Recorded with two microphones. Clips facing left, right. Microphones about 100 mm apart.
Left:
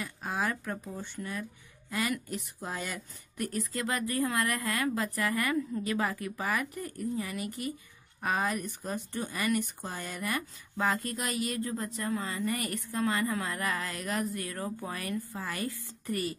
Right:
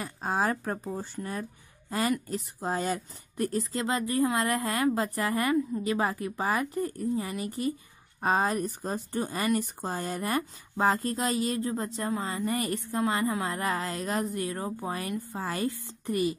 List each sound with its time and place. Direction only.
0.0 s a woman's voice: 35° right (ahead or behind); by 16.3 s 20° right (ahead or behind)